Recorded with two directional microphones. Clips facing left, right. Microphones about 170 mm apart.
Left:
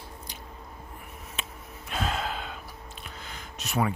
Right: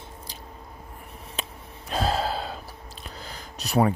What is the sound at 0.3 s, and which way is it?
Squish, 30° right (ahead or behind).